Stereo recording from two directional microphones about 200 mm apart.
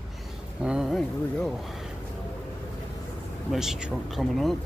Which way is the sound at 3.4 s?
Centre (ahead or behind).